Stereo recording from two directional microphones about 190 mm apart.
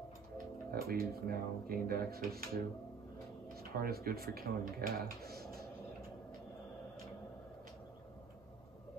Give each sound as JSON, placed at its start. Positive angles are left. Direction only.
{"t": 0.7, "sound": "speech", "side_deg": -50}
{"t": 3.5, "sound": "speech", "side_deg": -55}